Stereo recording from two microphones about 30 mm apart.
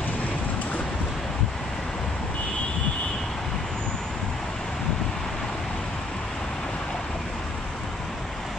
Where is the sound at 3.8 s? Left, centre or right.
Left.